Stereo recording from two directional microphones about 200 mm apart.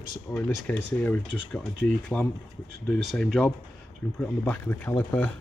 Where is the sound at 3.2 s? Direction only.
5° left (ahead or behind).